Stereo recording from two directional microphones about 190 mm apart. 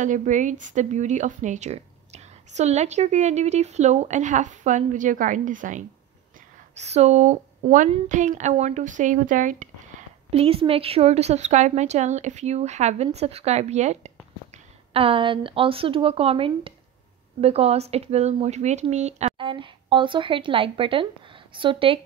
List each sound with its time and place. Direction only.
0.0 s a woman's voice: 40° right (ahead or behind)